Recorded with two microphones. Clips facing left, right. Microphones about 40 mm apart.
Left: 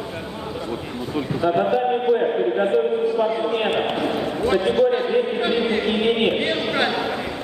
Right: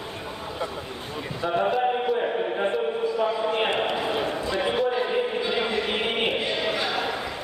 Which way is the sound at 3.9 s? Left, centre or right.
Left.